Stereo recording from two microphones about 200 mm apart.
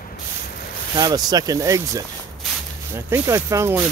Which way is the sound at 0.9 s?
20° right (ahead or behind).